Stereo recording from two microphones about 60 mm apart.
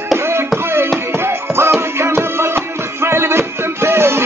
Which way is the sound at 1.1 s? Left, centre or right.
Right.